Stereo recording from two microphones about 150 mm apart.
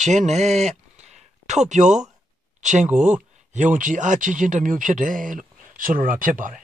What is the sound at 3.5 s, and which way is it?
Speech, 55° right (ahead or behind).